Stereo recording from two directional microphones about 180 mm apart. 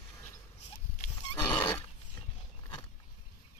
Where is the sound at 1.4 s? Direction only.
25° left (ahead or behind).